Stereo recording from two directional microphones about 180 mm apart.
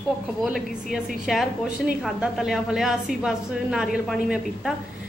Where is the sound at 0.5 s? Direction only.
Centre (ahead or behind).